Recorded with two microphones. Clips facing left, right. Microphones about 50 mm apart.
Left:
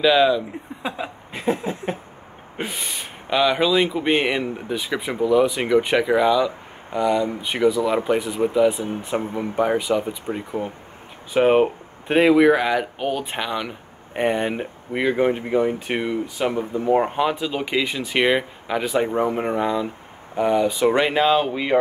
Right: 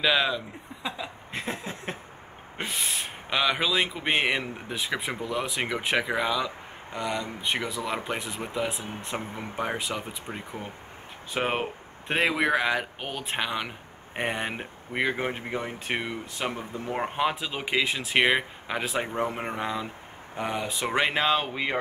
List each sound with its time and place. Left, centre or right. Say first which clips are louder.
0.0 s speech: left 8 dB; centre
0.8 s speech: left 6 dB; left
1.3 s a sound: left 11 dB; centre
2.5 s speech: left 2 dB; centre